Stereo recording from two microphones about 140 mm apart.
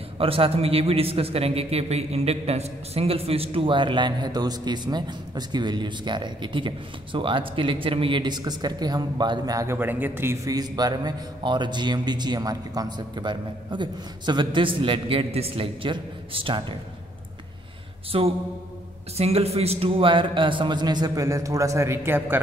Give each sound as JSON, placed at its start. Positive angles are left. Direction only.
{"t": 0.2, "sound": "a man's voice", "side_deg": -40}
{"t": 18.1, "sound": "mantra", "side_deg": -45}
{"t": 19.1, "sound": "a man's voice", "side_deg": -45}